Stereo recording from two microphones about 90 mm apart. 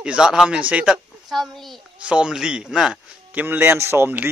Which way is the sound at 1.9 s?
10° right (ahead or behind).